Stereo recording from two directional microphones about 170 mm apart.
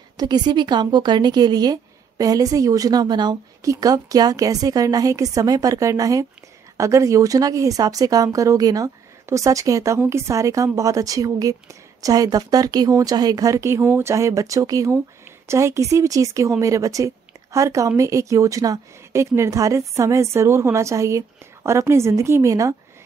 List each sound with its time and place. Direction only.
0.2 s a woman's voice: 25° right (ahead or behind)